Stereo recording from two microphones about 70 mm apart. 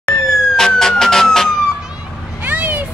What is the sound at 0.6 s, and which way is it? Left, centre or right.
Emergency vehicle, centre.